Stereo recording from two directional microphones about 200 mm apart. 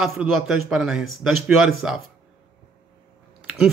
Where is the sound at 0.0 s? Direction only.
Centre (ahead or behind).